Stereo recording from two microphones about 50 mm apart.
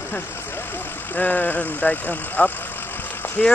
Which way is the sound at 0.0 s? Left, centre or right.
Left.